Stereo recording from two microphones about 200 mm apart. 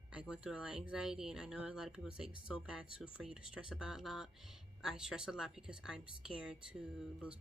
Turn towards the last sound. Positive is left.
turn(degrees=-5)  # may be behind; listen again after turning